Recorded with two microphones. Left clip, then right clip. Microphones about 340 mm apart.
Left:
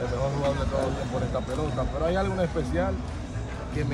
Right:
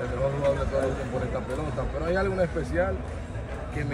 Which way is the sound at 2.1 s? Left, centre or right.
Centre.